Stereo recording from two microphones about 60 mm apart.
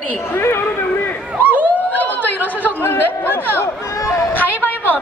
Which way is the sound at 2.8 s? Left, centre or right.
Left.